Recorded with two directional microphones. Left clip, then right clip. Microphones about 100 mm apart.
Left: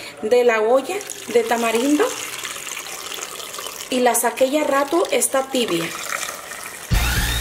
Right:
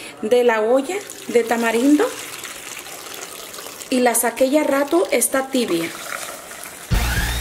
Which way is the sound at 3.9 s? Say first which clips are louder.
Even; 35° right (ahead or behind).